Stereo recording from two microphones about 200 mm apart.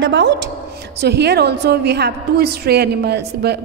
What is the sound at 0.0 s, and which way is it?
A woman's voice, 60° right (ahead or behind).